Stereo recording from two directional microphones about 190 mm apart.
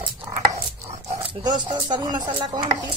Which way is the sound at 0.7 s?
15° right (ahead or behind).